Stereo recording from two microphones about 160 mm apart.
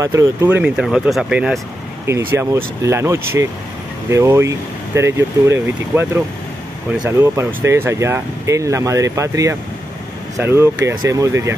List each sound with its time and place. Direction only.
0.0 s speech: 20° right (ahead or behind); by 1.6 s 5° right (ahead or behind)
2.0 s speech: 15° right (ahead or behind)